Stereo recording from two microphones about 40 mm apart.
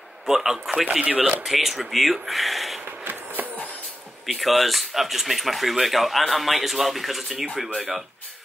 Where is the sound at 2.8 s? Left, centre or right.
Right.